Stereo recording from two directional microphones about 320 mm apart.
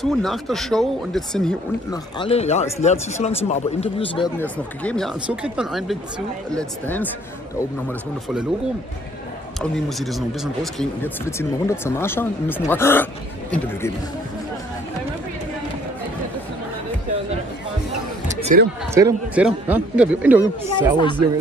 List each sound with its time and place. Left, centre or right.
0.0 s speech: centre
2.1 s a man's voice: centre
4.4 s speech: centre
9.6 s speech: centre
18.3 s a sound: right
18.9 s speech: centre